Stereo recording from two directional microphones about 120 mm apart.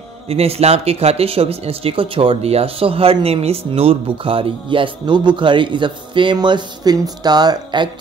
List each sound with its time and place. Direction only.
0.3 s speech: 55° right (ahead or behind); by 7.9 s 35° right (ahead or behind)